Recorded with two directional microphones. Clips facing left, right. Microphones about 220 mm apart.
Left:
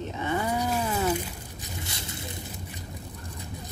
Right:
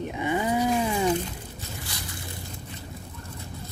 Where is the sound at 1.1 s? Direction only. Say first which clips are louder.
Right 3 dB; 10° left (ahead or behind).